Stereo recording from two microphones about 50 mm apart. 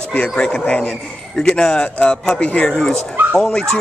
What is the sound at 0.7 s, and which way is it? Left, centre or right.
A man's voice, left.